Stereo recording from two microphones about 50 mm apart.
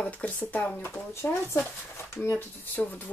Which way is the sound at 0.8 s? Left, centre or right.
Left.